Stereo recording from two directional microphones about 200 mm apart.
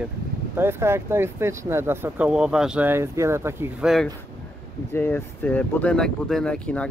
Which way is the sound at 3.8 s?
Centre (ahead or behind).